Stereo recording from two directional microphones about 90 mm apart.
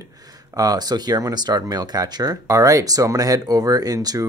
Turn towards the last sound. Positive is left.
turn(degrees=-45)  # may be behind; listen again after turning